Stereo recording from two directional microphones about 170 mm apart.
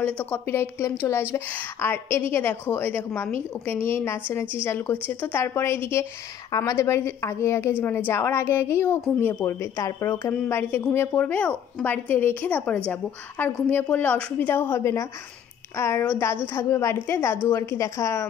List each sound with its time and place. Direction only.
0.0 s a woman's voice: 10° left (ahead or behind)